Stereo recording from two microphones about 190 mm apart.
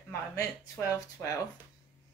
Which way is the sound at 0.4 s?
15° left (ahead or behind).